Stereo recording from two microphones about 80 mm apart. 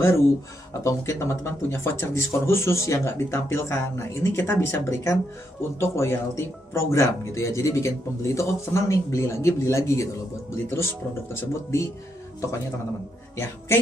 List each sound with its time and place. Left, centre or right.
0.0 s speech: left